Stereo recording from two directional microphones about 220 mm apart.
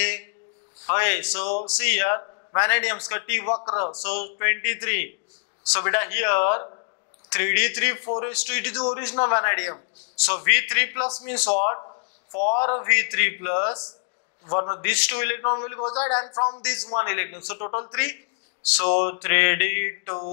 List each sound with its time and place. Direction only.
0.8 s a man's voice: 15° left (ahead or behind)
3.4 s a man's voice: 25° left (ahead or behind)
4.0 s a man's voice: 10° left (ahead or behind)
12.5 s a man's voice: 30° left (ahead or behind)
12.8 s a man's voice: 15° left (ahead or behind)
16.6 s a man's voice: 10° left (ahead or behind)